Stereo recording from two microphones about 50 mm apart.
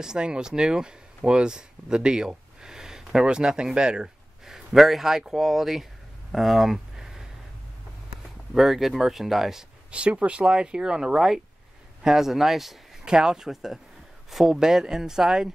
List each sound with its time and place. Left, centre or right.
0.0 s speech: centre
4.7 s speech: centre
6.3 s a sound: centre
8.5 s speech: centre
9.8 s speech: right; by 12.7 s centre
13.0 s speech: centre